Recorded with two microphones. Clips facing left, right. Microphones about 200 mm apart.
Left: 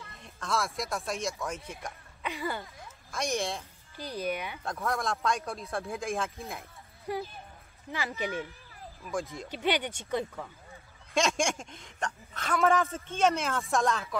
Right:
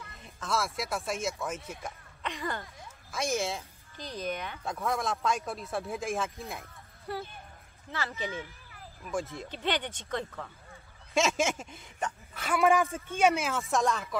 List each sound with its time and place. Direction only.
0.2 s speech: 5° right (ahead or behind)
2.3 s speech: 5° left (ahead or behind)
4.0 s speech: 10° left (ahead or behind)
4.6 s speech: centre (ahead or behind)
7.1 s speech: 10° left (ahead or behind)
9.0 s speech: centre (ahead or behind)
9.5 s speech: 10° left (ahead or behind)
11.1 s speech: 5° right (ahead or behind)